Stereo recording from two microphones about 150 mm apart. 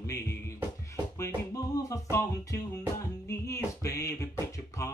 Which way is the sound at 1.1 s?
20° left (ahead or behind).